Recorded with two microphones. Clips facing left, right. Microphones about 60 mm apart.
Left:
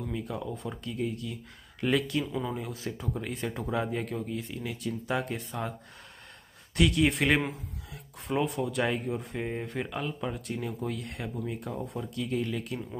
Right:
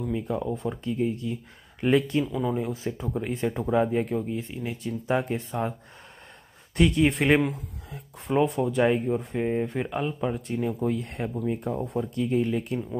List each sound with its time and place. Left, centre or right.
0.1 s speech: right
2.4 s speech: centre
2.7 s speech: right
6.8 s speech: right
8.5 s speech: right
9.4 s speech: centre; by 11.3 s right
11.3 s speech: centre
11.8 s speech: right